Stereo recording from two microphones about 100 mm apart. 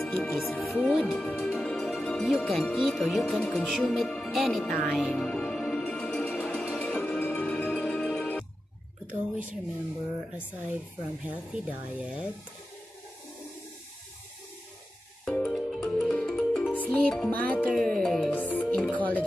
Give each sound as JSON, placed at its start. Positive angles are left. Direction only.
{"t": 0.0, "sound": "speech", "side_deg": 0}
{"t": 0.8, "sound": "music", "side_deg": 0}
{"t": 3.3, "sound": "music", "side_deg": 15}
{"t": 3.5, "sound": "music", "side_deg": 0}
{"t": 4.2, "sound": "speech", "side_deg": 0}
{"t": 4.6, "sound": "music", "side_deg": 10}
{"t": 6.4, "sound": "music", "side_deg": 0}
{"t": 6.8, "sound": "music", "side_deg": 15}
{"t": 9.0, "sound": "a sound", "side_deg": -15}
{"t": 11.2, "sound": "speech", "side_deg": -15}
{"t": 15.2, "sound": "music", "side_deg": 5}
{"t": 17.3, "sound": "music", "side_deg": 15}
{"t": 17.7, "sound": "music", "side_deg": 5}
{"t": 18.3, "sound": "music", "side_deg": 15}